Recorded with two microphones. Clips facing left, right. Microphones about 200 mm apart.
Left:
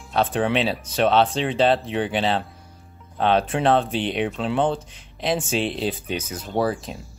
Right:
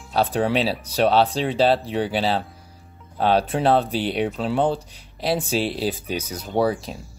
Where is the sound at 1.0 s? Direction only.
Centre (ahead or behind).